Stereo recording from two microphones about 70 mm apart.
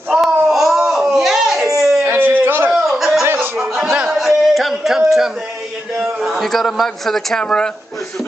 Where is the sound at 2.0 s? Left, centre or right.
Right.